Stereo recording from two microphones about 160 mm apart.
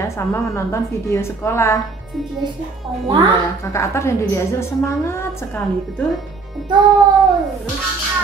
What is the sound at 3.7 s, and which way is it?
A woman's voice, 15° left (ahead or behind).